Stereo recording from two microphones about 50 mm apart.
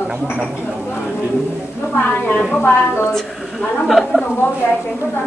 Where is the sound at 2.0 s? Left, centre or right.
Left.